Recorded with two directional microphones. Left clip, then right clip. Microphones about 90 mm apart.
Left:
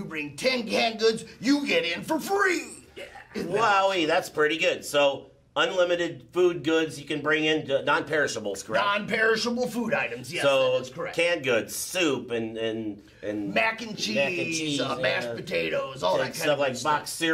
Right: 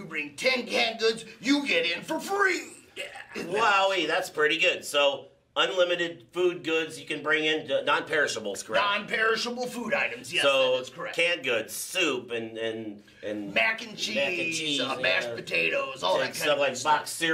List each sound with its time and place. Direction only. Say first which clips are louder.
0.1 s speech: even; 40° left (ahead or behind)
3.5 s a man's voice: left 1 dB; 10° right (ahead or behind)
8.7 s speech: left 1 dB; 45° left (ahead or behind)
9.7 s speech: left 1 dB; 25° left (ahead or behind)
10.4 s a man's voice: left 1 dB; 15° right (ahead or behind)
13.5 s speech: even; 35° left (ahead or behind)
14.5 s a man's voice: even; 10° right (ahead or behind)
14.8 s speech: even; 35° left (ahead or behind)
16.1 s a man's voice: left 1 dB; 10° right (ahead or behind)